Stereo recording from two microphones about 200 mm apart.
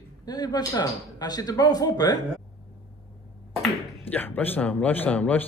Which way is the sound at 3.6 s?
10° left (ahead or behind).